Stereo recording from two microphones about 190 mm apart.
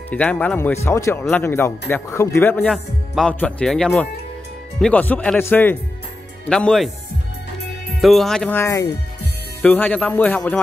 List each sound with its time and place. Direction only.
0.1 s a man's voice: 5° left (ahead or behind)
8.0 s a man's voice: centre (ahead or behind)